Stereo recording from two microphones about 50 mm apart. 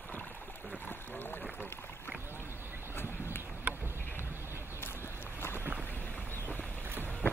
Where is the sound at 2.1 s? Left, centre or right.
Right.